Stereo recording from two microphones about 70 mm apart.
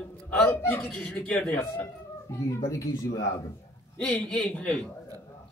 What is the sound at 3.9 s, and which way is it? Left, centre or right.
Speech, centre.